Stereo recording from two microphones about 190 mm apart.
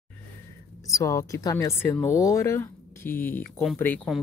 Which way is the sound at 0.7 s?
20° left (ahead or behind).